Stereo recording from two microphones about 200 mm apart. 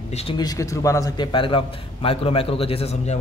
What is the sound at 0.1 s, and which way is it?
Speech, 30° left (ahead or behind).